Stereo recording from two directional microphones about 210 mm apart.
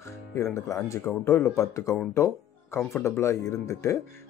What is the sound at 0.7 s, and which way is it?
Speech, 15° left (ahead or behind).